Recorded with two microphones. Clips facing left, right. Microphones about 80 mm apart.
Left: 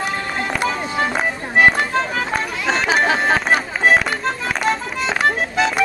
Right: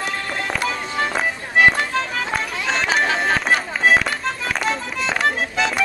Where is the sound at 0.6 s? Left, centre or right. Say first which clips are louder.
Left 3 dB; centre.